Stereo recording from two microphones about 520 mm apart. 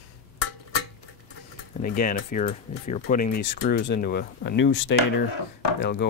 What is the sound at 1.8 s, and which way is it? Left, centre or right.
Speech, centre.